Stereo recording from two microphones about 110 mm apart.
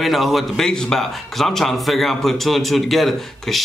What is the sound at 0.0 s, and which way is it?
A man's voice, centre (ahead or behind).